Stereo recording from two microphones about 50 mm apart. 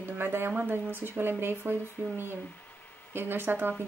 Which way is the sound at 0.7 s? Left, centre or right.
Right.